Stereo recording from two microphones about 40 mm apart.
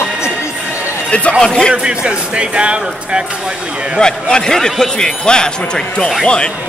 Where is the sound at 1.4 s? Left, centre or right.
Centre.